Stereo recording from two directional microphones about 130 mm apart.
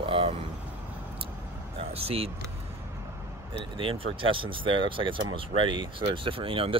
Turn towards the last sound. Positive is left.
turn(degrees=-45)  # may be behind; listen again after turning